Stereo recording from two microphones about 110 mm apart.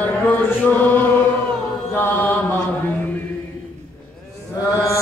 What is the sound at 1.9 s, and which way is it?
Mantra, 20° left (ahead or behind).